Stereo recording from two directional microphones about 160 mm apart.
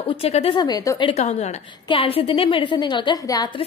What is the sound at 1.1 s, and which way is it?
A woman's voice, 45° left (ahead or behind).